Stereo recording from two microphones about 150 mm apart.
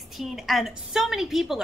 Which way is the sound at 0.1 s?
Centre (ahead or behind).